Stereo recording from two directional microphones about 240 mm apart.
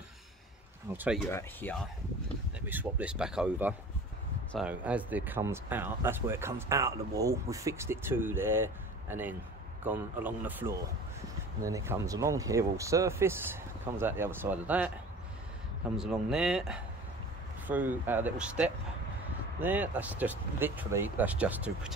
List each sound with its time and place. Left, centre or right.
0.9 s speech: centre
1.3 s speech: centre
2.6 s speech: centre
16.0 s speech: centre